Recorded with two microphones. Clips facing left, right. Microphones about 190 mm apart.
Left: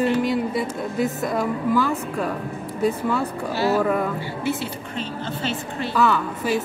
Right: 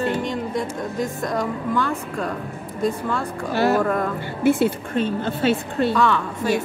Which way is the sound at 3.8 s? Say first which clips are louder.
Even; 5° left (ahead or behind).